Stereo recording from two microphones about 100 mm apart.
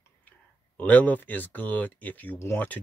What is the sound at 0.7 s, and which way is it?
Speech, 15° left (ahead or behind).